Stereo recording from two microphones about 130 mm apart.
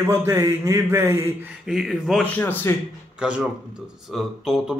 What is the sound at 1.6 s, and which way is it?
Speech, 5° right (ahead or behind).